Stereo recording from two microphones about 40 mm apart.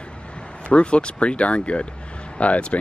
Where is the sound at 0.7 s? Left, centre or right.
Left.